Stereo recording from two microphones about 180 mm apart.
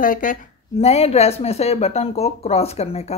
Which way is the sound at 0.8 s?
35° left (ahead or behind).